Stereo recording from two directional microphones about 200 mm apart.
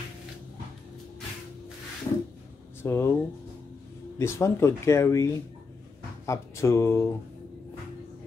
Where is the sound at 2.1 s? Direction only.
20° left (ahead or behind).